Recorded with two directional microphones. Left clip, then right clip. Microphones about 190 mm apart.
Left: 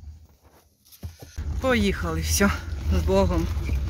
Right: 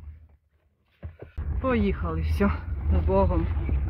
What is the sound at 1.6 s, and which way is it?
Speech, 10° left (ahead or behind).